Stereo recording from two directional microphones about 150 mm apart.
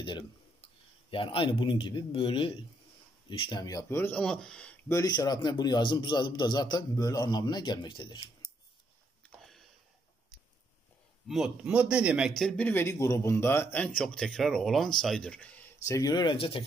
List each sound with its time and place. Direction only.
0.0 s a sound: 35° left (ahead or behind)
1.1 s speech: 35° left (ahead or behind); by 4.7 s 5° left (ahead or behind)
4.8 s a man's voice: 25° left (ahead or behind)
9.4 s a sound: centre (ahead or behind)
11.2 s speech: 5° right (ahead or behind)
15.9 s speech: 25° left (ahead or behind)